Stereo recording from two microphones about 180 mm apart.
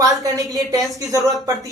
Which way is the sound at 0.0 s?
20° right (ahead or behind).